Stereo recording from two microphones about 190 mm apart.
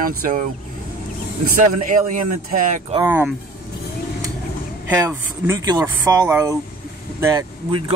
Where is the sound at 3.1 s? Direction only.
10° right (ahead or behind).